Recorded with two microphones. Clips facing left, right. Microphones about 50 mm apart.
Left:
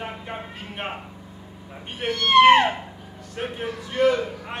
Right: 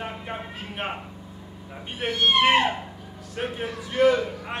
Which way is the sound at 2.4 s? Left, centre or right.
Left.